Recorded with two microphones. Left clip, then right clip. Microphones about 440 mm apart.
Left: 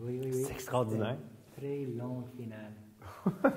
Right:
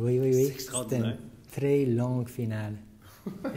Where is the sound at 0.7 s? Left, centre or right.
Left.